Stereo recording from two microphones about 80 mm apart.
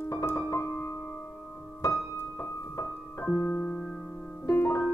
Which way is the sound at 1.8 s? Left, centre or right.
Left.